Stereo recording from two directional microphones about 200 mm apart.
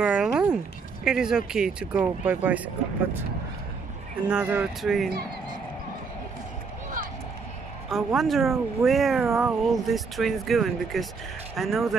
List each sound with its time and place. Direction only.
0.0 s speech: 5° right (ahead or behind)
4.3 s speech: 5° right (ahead or behind)
7.9 s speech: centre (ahead or behind)